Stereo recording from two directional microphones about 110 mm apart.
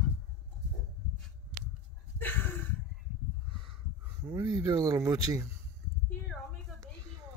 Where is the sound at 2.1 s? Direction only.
20° left (ahead or behind).